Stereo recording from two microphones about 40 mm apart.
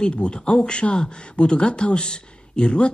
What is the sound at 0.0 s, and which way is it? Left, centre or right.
Speech, left.